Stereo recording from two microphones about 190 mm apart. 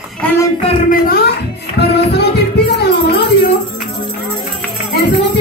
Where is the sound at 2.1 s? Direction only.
60° left (ahead or behind).